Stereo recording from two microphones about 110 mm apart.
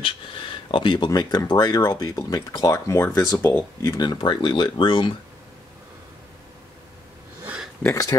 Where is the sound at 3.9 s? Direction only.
40° left (ahead or behind).